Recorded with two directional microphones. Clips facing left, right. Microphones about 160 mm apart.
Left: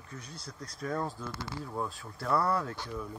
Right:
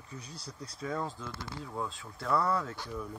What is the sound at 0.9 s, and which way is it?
Speech, 5° left (ahead or behind).